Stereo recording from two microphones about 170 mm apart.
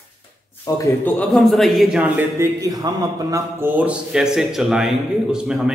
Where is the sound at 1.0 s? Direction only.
Centre (ahead or behind).